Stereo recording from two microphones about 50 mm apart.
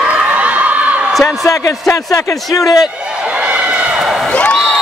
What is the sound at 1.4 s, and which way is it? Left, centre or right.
A man's voice, left.